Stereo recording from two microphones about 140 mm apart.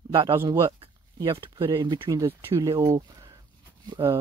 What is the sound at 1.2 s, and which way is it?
Speech, 35° right (ahead or behind).